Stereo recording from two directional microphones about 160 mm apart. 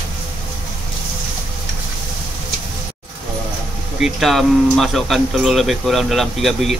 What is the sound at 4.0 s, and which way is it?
Speech, centre (ahead or behind).